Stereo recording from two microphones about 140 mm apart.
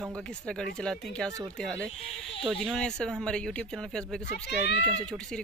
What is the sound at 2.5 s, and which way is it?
Speech, centre (ahead or behind).